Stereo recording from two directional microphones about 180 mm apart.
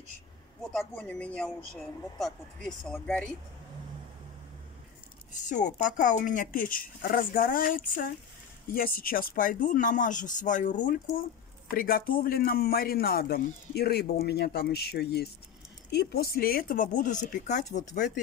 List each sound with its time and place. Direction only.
0.7 s speech: 5° left (ahead or behind)
5.3 s a man's voice: 45° left (ahead or behind)